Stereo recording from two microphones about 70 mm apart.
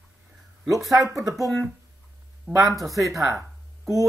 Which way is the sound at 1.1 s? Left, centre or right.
Right.